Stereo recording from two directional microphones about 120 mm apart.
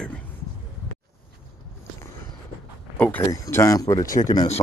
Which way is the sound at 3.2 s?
25° left (ahead or behind).